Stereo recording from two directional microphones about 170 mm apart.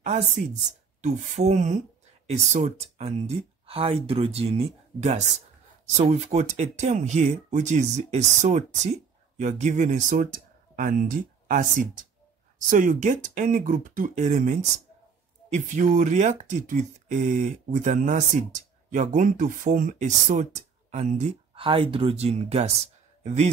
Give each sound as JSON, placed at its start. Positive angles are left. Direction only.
{"t": 0.0, "sound": "a man's voice", "side_deg": -45}